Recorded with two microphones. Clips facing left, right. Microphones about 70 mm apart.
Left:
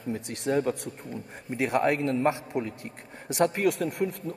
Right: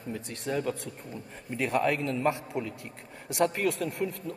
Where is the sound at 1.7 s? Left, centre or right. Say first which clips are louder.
Left 3 dB; left.